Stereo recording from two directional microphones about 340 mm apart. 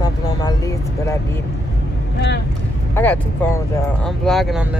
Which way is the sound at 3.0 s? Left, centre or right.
Centre.